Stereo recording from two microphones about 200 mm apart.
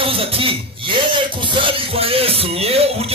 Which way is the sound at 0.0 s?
30° right (ahead or behind).